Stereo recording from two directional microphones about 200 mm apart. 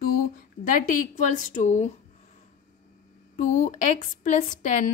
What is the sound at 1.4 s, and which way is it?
Speech, 35° left (ahead or behind).